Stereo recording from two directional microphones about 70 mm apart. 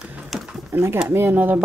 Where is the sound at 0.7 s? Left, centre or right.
Right.